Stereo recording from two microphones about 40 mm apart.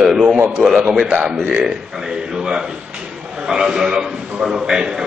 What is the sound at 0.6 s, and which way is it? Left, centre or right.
Speech, left.